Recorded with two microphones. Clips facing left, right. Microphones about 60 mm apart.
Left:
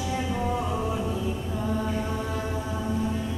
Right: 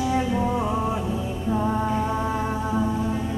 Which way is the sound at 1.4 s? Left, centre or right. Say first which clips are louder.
Right 5 dB; right.